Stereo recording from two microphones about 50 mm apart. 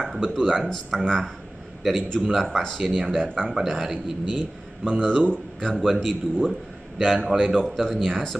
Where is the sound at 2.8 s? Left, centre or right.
Centre.